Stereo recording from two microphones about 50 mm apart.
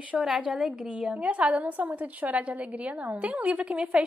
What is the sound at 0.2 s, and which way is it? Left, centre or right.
A woman's voice, centre.